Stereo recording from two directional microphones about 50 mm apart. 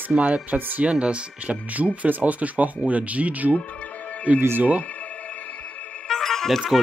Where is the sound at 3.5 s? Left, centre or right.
Left.